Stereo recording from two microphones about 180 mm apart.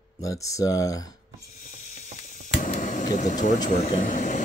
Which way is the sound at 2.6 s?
45° left (ahead or behind).